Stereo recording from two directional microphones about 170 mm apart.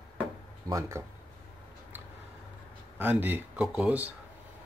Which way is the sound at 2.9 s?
10° right (ahead or behind).